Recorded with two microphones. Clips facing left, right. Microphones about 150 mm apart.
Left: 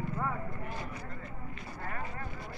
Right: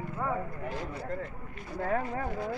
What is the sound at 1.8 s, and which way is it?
Speech, 90° right.